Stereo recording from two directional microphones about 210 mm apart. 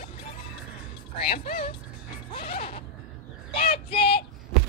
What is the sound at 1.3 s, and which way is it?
Speech, 45° left (ahead or behind).